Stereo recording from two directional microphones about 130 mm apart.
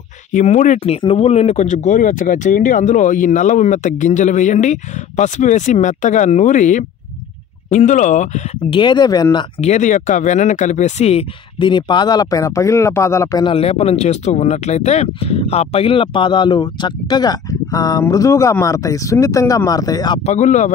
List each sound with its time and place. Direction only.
0.3 s speech: 70° left (ahead or behind)
1.0 s speech: 50° left (ahead or behind); by 8.3 s 70° left (ahead or behind)
8.6 s speech: 40° left (ahead or behind)
9.6 s speech: 65° left (ahead or behind); by 13.4 s 20° left (ahead or behind)
13.4 s speech: 45° left (ahead or behind)
20.2 s speech: 70° left (ahead or behind)